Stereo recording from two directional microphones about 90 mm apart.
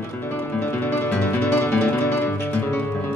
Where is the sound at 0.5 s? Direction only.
20° left (ahead or behind).